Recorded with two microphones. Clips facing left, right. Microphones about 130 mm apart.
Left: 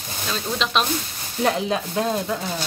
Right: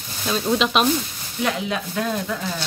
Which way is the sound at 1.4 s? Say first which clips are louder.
Left 3 dB; 35° left (ahead or behind).